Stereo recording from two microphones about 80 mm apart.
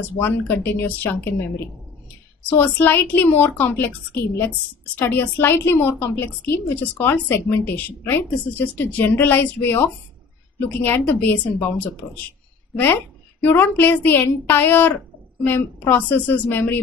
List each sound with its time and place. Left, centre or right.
0.5 s a woman's voice: left
2.5 s a woman's voice: left